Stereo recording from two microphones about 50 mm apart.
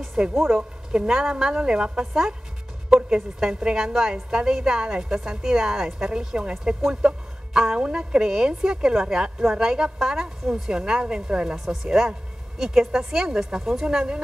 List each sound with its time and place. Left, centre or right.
0.0 s a sound: centre
0.4 s a woman's voice: centre
2.9 s music: right
3.2 s a woman's voice: centre